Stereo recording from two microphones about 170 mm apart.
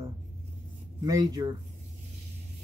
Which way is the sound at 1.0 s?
20° right (ahead or behind).